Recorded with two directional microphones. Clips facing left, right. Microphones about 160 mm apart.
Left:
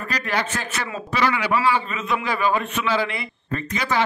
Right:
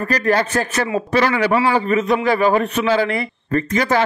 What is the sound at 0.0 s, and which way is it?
A man's voice, 45° right (ahead or behind).